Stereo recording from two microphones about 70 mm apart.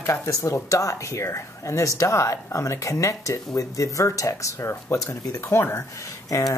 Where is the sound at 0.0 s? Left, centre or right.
Left.